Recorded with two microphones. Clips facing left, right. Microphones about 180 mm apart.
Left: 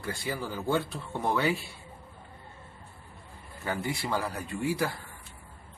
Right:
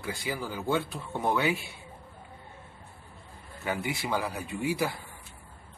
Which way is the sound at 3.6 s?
15° right (ahead or behind).